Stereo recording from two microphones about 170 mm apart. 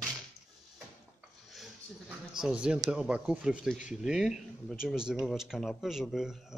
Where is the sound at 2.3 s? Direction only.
5° right (ahead or behind).